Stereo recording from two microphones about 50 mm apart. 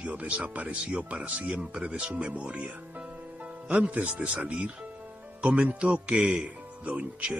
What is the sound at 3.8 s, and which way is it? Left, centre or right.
Speech, right.